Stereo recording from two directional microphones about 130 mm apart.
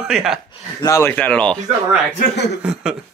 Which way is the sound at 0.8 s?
20° left (ahead or behind).